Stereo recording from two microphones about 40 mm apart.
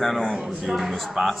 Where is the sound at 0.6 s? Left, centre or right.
Centre.